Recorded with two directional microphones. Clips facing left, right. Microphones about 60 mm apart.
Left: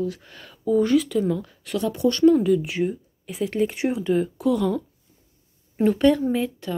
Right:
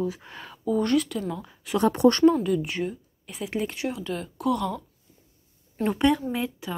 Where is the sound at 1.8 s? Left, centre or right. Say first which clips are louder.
Right 3 dB; right.